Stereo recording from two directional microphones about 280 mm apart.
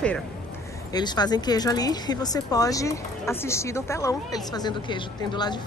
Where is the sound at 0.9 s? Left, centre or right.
Centre.